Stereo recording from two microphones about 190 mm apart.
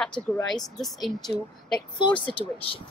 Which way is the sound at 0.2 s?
25° right (ahead or behind).